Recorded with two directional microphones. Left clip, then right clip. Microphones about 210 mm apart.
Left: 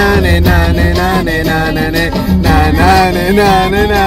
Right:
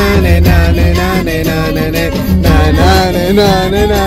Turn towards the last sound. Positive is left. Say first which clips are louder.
# even
turn(degrees=25)  # may be behind; listen again after turning